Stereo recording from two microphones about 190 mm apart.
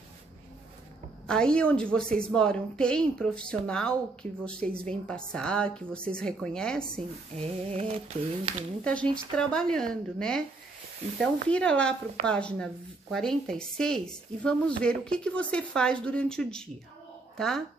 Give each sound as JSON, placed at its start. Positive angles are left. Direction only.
{"t": 1.2, "sound": "a woman's voice", "side_deg": 5}
{"t": 7.3, "sound": "a sound", "side_deg": -35}
{"t": 8.8, "sound": "a woman's voice", "side_deg": 5}